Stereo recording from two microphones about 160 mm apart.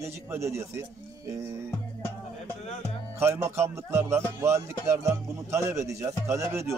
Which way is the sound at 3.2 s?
15° right (ahead or behind).